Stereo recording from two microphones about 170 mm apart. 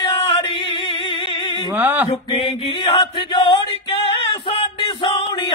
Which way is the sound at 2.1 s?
30° left (ahead or behind).